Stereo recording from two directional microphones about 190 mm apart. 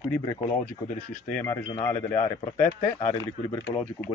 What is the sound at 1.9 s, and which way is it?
Speech, 40° left (ahead or behind).